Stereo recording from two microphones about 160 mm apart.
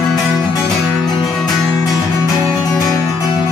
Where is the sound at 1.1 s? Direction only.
25° left (ahead or behind).